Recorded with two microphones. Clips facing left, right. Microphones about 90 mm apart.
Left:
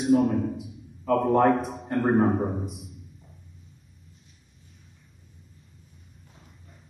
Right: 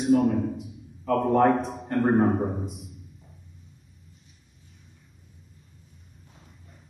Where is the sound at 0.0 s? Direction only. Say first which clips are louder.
Even; centre (ahead or behind).